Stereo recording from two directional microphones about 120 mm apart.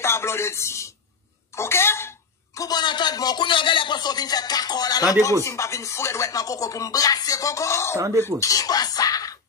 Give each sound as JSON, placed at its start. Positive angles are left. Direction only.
{"t": 0.0, "sound": "speech", "side_deg": 20}